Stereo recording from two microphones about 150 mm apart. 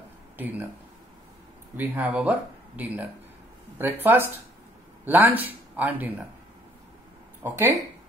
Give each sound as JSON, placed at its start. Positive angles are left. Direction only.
{"t": 0.4, "sound": "speech", "side_deg": -10}
{"t": 1.8, "sound": "speech", "side_deg": -10}
{"t": 7.4, "sound": "speech", "side_deg": -20}